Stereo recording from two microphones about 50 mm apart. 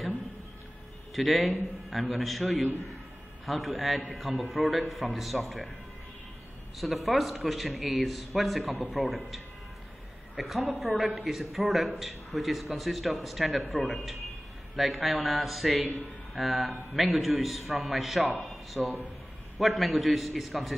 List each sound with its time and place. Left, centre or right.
1.1 s a man's voice: centre
6.8 s a man's voice: centre